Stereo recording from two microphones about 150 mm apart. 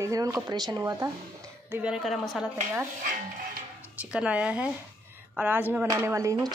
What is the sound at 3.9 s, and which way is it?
Speech, 10° right (ahead or behind).